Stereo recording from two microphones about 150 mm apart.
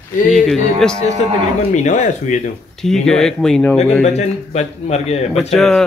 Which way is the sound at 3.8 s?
45° left (ahead or behind).